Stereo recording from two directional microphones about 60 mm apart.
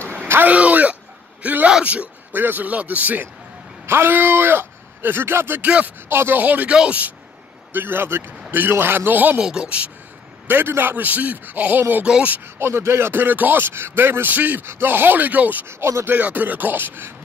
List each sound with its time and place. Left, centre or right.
0.4 s a man's voice: right
2.3 s a man's voice: right
3.8 s speech: right
5.6 s a man's voice: right
6.0 s speech: right
6.4 s a man's voice: right
7.7 s speech: right
9.4 s speech: centre
10.5 s a man's voice: right; by 12.4 s centre
12.5 s speech: right
14.3 s a man's voice: right
14.6 s speech: right
15.8 s speech: right
16.1 s speech: right